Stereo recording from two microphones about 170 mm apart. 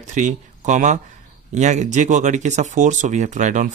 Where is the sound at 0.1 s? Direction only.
45° right (ahead or behind).